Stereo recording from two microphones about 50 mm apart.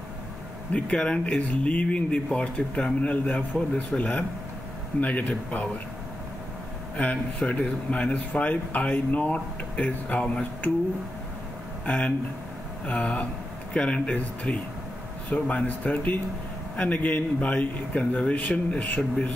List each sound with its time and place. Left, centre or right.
0.7 s speech: left
7.4 s speech: left
11.8 s speech: left